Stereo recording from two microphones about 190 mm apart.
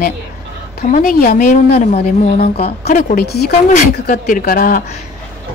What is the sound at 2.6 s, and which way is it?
Speech, 50° left (ahead or behind).